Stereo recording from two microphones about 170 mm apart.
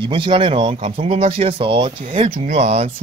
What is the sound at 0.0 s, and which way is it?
Speech, 30° right (ahead or behind).